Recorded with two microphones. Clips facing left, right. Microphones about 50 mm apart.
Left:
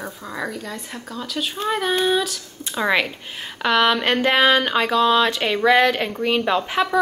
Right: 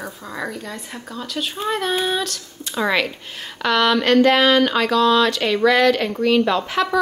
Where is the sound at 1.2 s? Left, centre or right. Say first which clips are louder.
Even; centre.